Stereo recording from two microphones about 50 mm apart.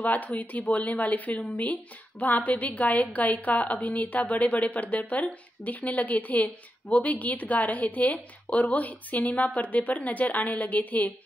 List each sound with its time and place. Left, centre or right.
0.0 s speech: left